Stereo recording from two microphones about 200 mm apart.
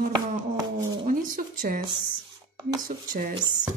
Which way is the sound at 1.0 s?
40° right (ahead or behind).